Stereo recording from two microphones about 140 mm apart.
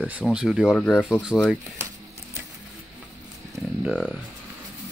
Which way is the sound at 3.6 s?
Centre (ahead or behind).